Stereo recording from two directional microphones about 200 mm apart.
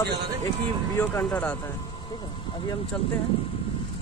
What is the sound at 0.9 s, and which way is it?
Speech, 10° left (ahead or behind).